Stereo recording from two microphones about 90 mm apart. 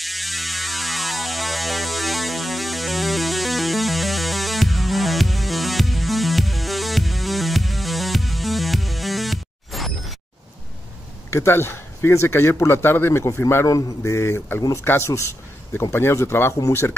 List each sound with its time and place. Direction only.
0.0 s music: centre (ahead or behind)
11.2 s speech: 30° left (ahead or behind)
16.5 s speech: 40° left (ahead or behind)